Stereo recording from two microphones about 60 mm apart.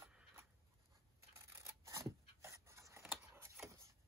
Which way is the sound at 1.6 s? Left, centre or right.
Right.